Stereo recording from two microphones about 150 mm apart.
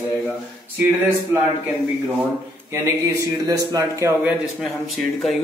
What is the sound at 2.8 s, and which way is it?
Speech, 20° right (ahead or behind).